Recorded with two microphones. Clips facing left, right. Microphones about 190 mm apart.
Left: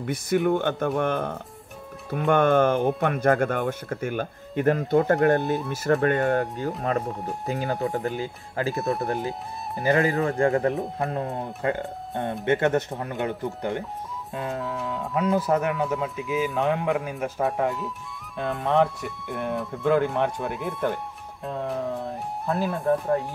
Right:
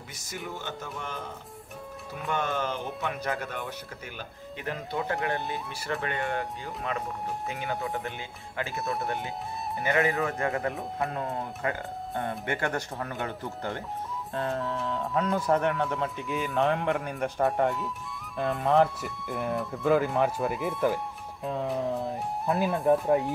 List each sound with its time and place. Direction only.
0.0 s speech: 60° left (ahead or behind); by 10.7 s 30° left (ahead or behind)
10.7 s speech: centre (ahead or behind)
11.1 s speech: 30° left (ahead or behind)
14.5 s speech: centre (ahead or behind)